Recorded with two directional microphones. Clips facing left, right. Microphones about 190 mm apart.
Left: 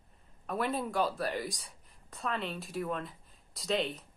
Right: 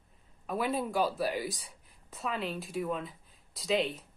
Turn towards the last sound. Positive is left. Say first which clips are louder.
# right 2 dB
turn(degrees=0)  # may be behind; listen again after turning